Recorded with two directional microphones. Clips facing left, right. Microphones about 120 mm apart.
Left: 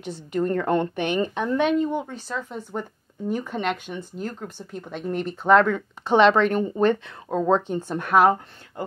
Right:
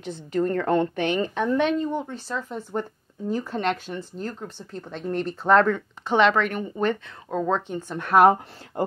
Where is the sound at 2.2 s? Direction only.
Centre (ahead or behind).